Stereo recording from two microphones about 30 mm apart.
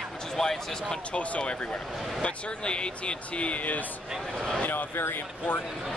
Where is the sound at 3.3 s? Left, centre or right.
Left.